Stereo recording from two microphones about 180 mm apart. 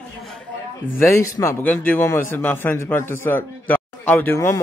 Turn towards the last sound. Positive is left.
turn(degrees=15)  # may be behind; listen again after turning